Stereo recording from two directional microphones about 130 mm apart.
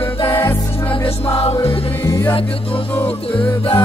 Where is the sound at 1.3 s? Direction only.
45° left (ahead or behind).